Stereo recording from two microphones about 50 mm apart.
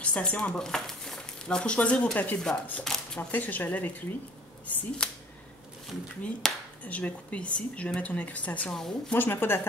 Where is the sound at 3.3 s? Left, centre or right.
Left.